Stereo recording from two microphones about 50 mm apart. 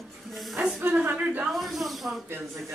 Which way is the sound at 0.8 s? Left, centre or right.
Right.